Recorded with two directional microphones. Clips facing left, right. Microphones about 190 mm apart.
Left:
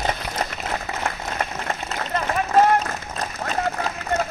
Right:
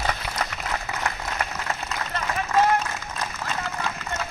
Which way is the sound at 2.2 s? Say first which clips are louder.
Left 4 dB; 40° left (ahead or behind).